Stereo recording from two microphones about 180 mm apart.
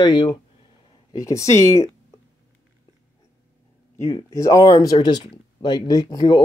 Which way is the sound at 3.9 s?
15° left (ahead or behind).